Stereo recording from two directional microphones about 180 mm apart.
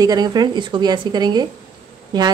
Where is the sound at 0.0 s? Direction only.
20° right (ahead or behind).